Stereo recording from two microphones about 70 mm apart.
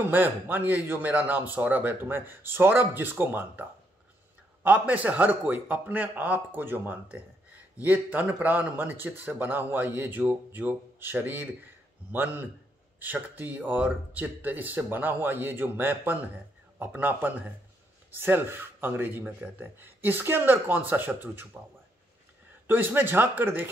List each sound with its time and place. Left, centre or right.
0.0 s a man's voice: right
4.6 s a man's voice: right
22.7 s speech: right